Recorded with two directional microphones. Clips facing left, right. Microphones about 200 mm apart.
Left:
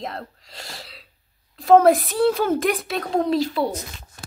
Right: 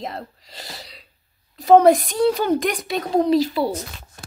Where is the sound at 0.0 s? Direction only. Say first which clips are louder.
Right 1 dB; centre (ahead or behind).